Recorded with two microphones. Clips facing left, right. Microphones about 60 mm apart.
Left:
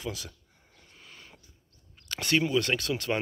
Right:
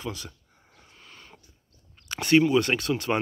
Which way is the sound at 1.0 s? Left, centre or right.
Centre.